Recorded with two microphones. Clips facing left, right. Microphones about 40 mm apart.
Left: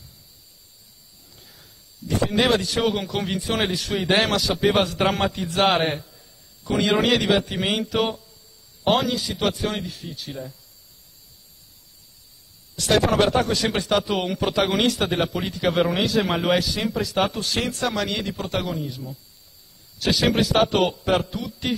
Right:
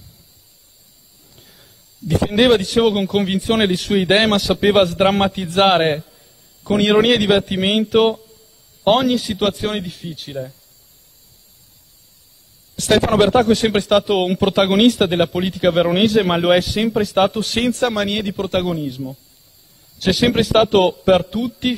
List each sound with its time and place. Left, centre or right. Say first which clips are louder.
1.3 s a man's voice: right 2 dB; right
12.7 s a sound: right 4 dB; right
13.2 s a man's voice: right 6 dB; right